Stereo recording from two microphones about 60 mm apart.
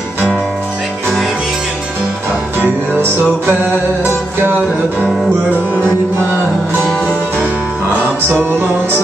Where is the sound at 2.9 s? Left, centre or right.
Right.